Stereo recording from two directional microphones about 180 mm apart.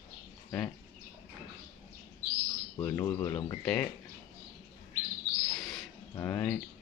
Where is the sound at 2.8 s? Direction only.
15° left (ahead or behind).